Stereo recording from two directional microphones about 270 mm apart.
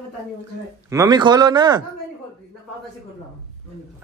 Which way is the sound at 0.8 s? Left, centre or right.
Centre.